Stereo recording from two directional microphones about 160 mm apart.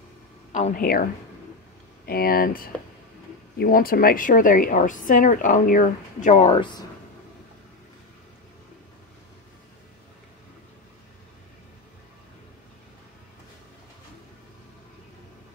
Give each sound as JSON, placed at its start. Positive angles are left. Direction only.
{"t": 0.5, "sound": "a woman's voice", "side_deg": 55}
{"t": 2.0, "sound": "a woman's voice", "side_deg": 70}
{"t": 6.5, "sound": "speech", "side_deg": 30}